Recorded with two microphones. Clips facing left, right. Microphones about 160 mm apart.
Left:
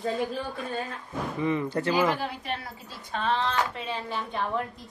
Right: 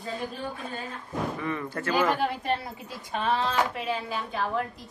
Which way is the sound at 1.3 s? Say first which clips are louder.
Left 5 dB; 20° left (ahead or behind).